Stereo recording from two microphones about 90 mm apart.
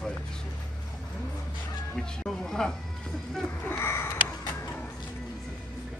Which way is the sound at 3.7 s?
25° left (ahead or behind).